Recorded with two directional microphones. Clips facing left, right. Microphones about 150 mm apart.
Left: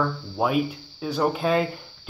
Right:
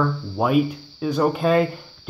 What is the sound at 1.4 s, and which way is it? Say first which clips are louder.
Speech: right 5 dB; 55° right (ahead or behind).